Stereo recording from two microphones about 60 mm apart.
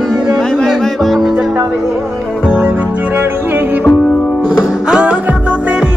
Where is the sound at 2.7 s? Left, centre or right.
Right.